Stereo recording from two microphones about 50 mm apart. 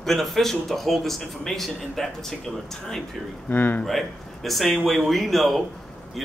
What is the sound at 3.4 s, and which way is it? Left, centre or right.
Speech, left.